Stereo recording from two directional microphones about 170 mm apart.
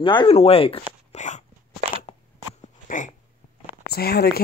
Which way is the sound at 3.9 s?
70° left (ahead or behind).